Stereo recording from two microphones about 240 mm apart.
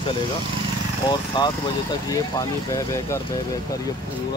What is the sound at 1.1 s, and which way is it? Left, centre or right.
Speech, centre.